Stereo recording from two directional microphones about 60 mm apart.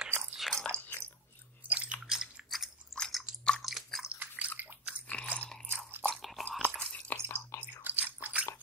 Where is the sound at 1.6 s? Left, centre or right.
Right.